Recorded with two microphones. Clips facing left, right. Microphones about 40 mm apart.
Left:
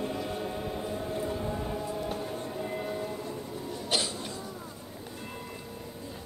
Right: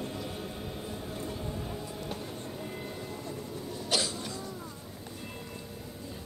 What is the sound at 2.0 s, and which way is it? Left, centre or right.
Train, centre.